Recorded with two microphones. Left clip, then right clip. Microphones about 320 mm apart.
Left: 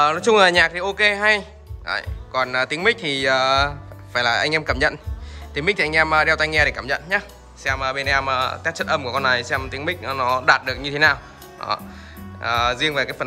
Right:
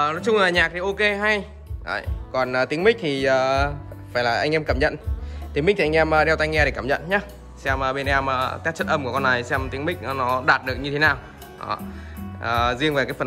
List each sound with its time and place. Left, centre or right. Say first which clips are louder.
0.0 s speech: left 5 dB; centre